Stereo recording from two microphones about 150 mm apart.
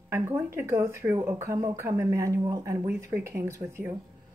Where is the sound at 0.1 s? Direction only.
15° right (ahead or behind).